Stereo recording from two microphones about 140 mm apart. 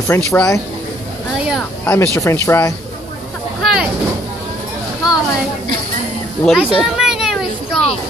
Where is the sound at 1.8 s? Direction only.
20° left (ahead or behind).